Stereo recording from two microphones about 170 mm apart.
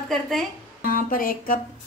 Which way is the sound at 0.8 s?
55° left (ahead or behind).